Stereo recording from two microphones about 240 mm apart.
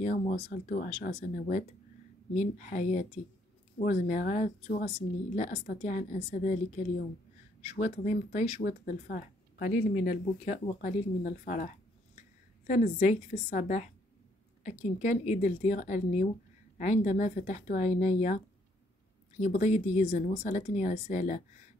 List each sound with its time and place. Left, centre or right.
0.0 s speech: left
7.6 s speech: left